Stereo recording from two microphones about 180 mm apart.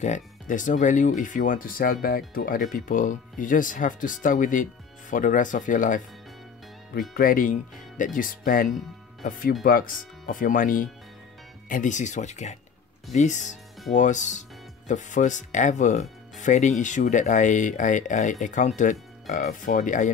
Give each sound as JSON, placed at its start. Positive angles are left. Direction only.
{"t": 0.0, "sound": "speech", "side_deg": 45}